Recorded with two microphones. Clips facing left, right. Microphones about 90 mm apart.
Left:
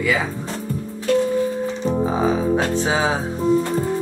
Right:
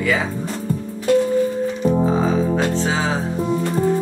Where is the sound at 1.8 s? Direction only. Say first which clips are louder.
Right 4 dB; 10° right (ahead or behind).